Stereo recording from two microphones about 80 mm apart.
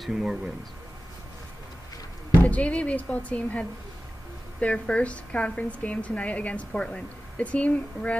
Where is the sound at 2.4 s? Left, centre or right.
Centre.